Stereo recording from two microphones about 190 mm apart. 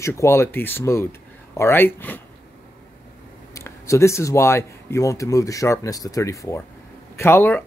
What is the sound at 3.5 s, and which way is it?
Speech, 15° left (ahead or behind).